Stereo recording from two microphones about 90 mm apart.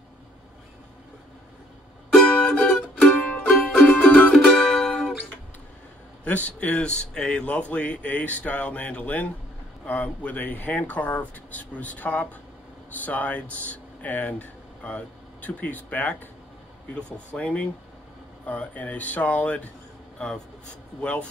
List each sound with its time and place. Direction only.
2.1 s music: 5° left (ahead or behind)
6.2 s speech: 15° left (ahead or behind)